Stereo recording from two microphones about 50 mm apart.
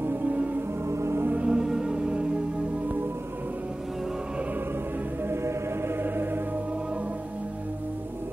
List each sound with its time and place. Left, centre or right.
0.0 s music: right
0.8 s music: right
1.3 s music: centre
5.3 s music: right
6.0 s music: right